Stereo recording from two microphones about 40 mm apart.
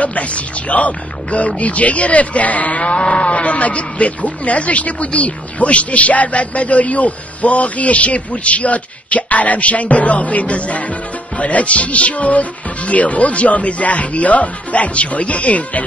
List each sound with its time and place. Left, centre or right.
0.0 s speech: left